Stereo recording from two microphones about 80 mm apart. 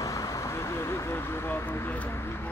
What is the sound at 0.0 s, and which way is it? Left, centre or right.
Vehicle, left.